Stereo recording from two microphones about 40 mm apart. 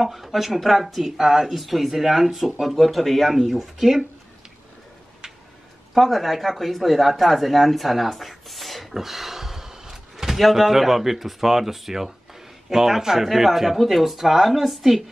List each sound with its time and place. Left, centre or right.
0.0 s speech: centre
3.3 s a man's voice: centre
5.9 s a man's voice: centre